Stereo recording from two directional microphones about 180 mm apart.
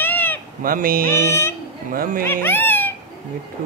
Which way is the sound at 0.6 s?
50° right (ahead or behind).